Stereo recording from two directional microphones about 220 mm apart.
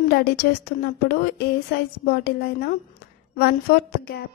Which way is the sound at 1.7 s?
45° left (ahead or behind).